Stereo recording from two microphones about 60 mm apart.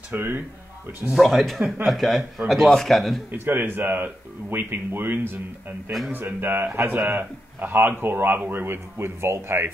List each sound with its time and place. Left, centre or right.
0.1 s a man's voice: right
1.1 s a man's voice: centre
3.3 s a man's voice: right